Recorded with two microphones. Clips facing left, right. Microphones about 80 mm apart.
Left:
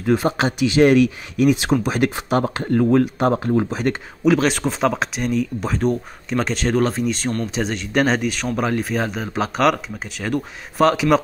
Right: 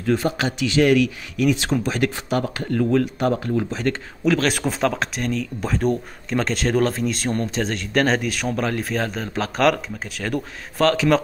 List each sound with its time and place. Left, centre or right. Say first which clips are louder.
0.0 s speech: left 3 dB; left
4.2 s speech: left 4 dB; centre
4.5 s speech: left 2 dB; centre